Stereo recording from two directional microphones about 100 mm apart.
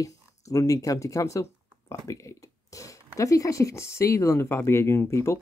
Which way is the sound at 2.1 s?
30° left (ahead or behind).